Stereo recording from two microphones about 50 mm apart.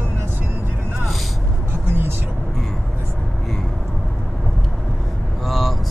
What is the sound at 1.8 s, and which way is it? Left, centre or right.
Vehicle, right.